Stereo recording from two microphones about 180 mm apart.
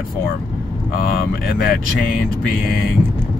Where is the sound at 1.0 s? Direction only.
55° left (ahead or behind).